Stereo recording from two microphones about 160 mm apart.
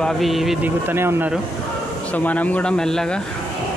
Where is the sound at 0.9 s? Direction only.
15° right (ahead or behind).